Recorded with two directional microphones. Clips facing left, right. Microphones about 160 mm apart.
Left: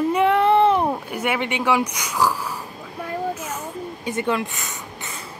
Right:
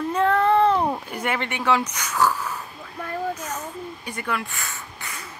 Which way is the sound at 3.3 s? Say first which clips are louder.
Left 1 dB; 10° left (ahead or behind).